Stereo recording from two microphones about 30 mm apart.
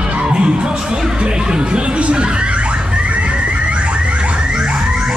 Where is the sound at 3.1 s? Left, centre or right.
Right.